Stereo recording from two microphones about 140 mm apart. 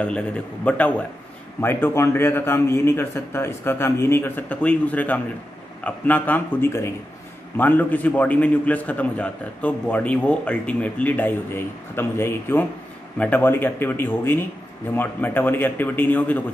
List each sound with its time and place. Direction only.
0.7 s a man's voice: 10° left (ahead or behind)